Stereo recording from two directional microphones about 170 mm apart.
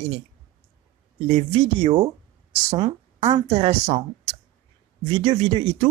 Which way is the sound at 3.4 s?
35° right (ahead or behind).